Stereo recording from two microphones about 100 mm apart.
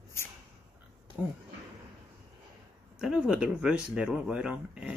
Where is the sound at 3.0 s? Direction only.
10° right (ahead or behind).